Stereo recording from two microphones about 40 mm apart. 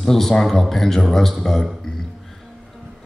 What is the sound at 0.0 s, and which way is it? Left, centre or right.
A man's voice, centre.